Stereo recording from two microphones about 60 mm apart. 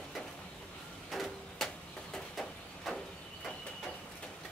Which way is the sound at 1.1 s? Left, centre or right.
Centre.